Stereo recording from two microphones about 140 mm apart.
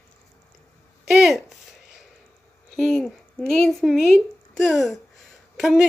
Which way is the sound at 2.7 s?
5° left (ahead or behind).